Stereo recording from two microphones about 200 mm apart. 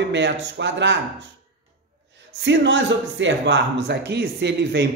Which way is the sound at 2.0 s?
65° right (ahead or behind).